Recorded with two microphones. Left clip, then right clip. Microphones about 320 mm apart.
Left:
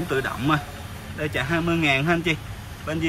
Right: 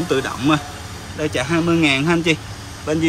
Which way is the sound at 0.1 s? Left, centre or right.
Centre.